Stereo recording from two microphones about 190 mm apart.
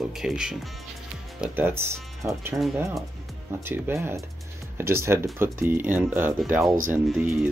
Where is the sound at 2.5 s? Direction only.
Centre (ahead or behind).